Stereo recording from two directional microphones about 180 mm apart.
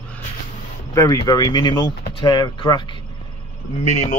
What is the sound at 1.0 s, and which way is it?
Speech, 20° left (ahead or behind).